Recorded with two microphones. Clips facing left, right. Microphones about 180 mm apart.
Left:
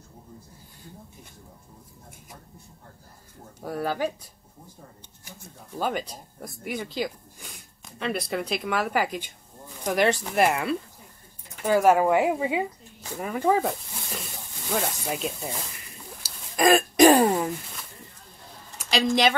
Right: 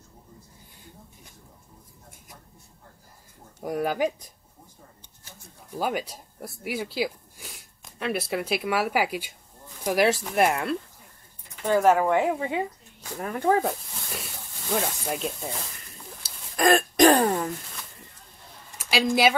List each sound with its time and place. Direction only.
3.6 s speech: 15° right (ahead or behind)
5.7 s speech: 10° right (ahead or behind)
16.2 s throat clearing: 10° left (ahead or behind)
18.8 s speech: 5° right (ahead or behind)